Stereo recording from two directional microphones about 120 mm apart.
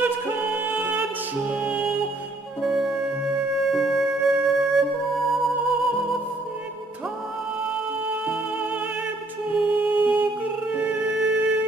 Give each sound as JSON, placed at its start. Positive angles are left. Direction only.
{"t": 0.6, "sound": "music", "side_deg": -15}
{"t": 9.6, "sound": "music", "side_deg": -10}